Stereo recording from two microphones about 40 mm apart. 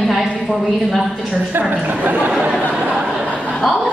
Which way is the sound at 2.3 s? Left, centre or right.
Right.